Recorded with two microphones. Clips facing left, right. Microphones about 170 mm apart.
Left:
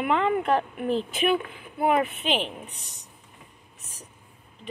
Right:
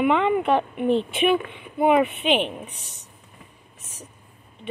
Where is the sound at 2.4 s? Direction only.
65° right (ahead or behind).